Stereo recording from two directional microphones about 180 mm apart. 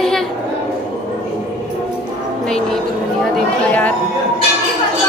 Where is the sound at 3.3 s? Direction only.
10° left (ahead or behind).